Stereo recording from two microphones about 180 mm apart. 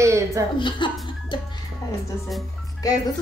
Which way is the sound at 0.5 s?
25° left (ahead or behind).